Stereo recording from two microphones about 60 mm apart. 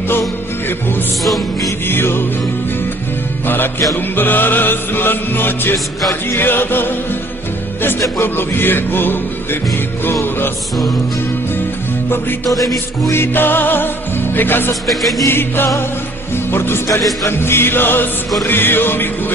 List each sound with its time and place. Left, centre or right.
1.9 s music: left
3.4 s music: left
8.2 s music: left
12.5 s music: left
13.1 s music: left
14.9 s music: centre
15.2 s music: left